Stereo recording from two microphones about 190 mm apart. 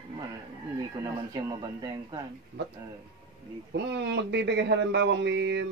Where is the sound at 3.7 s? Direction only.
65° right (ahead or behind).